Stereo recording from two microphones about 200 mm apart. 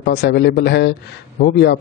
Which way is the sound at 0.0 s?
55° left (ahead or behind).